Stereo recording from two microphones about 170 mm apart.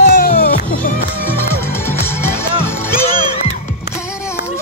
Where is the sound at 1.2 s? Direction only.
15° left (ahead or behind).